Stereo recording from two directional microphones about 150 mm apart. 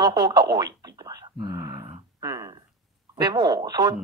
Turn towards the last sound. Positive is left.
turn(degrees=-25)  # may be behind; listen again after turning